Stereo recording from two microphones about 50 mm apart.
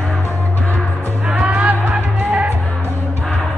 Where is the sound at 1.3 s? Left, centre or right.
Right.